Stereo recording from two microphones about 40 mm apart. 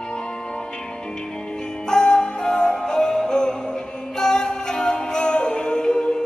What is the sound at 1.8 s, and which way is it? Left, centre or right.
Music, centre.